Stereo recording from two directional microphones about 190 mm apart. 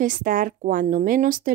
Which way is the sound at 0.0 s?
45° right (ahead or behind).